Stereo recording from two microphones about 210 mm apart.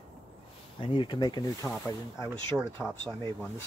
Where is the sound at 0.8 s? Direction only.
20° left (ahead or behind).